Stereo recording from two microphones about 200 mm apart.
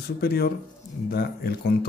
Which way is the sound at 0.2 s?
50° left (ahead or behind).